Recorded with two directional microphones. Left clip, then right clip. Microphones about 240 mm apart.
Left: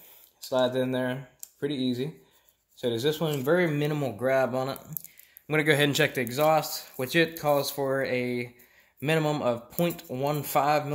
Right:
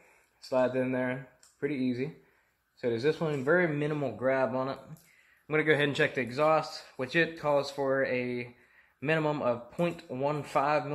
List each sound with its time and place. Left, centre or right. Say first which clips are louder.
0.5 s speech: left 2 dB; left